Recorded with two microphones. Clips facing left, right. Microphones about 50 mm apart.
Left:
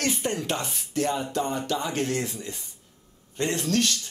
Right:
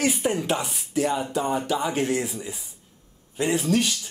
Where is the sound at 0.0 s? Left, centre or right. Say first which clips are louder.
Right 4 dB; centre.